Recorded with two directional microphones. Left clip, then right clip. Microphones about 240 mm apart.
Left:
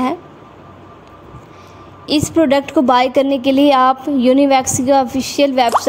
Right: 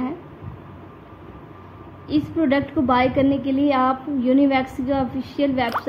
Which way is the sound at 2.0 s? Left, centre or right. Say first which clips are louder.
Left 8 dB; left.